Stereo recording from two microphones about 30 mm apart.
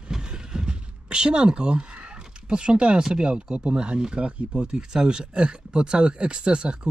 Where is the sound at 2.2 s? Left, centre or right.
Right.